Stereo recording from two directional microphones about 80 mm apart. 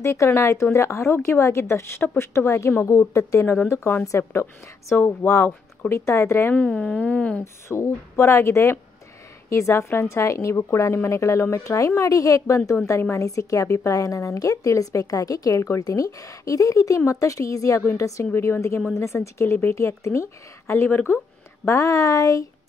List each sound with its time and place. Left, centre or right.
0.0 s a woman's voice: left
6.5 s speech: centre
7.6 s a woman's voice: left
18.2 s a woman's voice: left